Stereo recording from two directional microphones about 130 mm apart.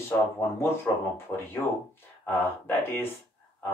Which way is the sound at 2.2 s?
15° left (ahead or behind).